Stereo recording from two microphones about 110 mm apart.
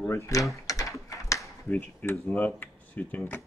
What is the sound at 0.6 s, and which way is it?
Typing, 30° left (ahead or behind).